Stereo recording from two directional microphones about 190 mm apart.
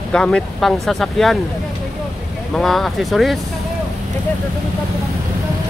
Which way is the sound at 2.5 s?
Centre (ahead or behind).